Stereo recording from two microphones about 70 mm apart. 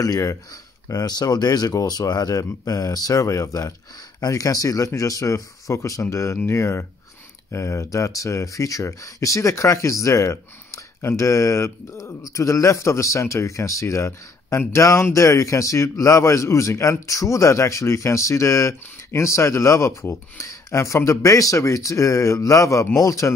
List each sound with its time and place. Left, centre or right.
0.0 s speech: left
0.8 s speech: left